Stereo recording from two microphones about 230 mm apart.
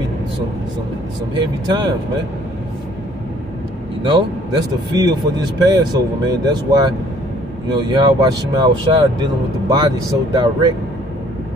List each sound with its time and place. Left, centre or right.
1.3 s speech: centre
4.9 s speech: centre